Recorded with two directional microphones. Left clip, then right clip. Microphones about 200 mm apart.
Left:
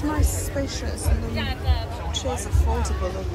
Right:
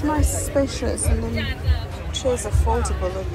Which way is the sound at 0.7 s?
5° right (ahead or behind).